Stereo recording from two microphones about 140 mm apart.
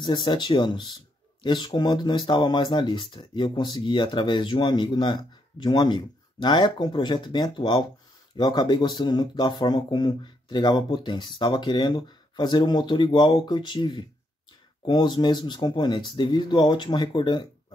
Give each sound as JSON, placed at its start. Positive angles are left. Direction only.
{"t": 0.0, "sound": "speech", "side_deg": 35}